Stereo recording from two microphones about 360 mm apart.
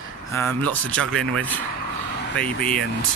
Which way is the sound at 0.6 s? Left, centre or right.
Centre.